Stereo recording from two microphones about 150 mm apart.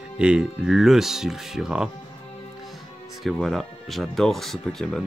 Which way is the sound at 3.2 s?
Centre (ahead or behind).